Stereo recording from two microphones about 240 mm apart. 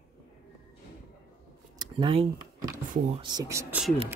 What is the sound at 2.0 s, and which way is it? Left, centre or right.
Speech, right.